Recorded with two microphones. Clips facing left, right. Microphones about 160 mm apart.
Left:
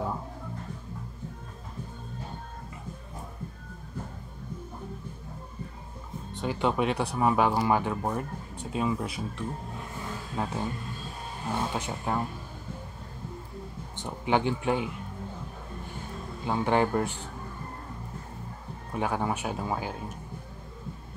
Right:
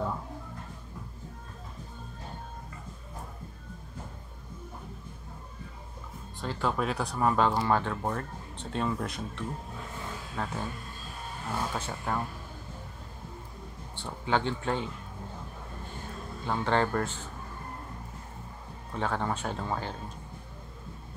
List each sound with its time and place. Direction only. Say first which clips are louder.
6.3 s speech: left 4 dB; 15° left (ahead or behind)
6.8 s speech: left 3 dB; centre (ahead or behind)
10.3 s speech: left 4 dB; 20° left (ahead or behind)
13.9 s speech: left 3 dB; 15° left (ahead or behind)
16.4 s speech: left 2 dB; 15° left (ahead or behind)
18.9 s speech: left 2 dB; 10° left (ahead or behind)